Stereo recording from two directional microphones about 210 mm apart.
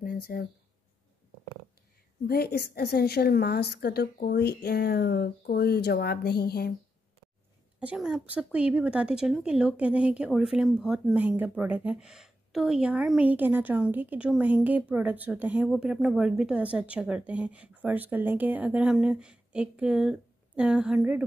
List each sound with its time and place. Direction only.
0.0 s a sound: 45° left (ahead or behind)
2.2 s a woman's voice: 50° left (ahead or behind)
7.8 s speech: 5° right (ahead or behind)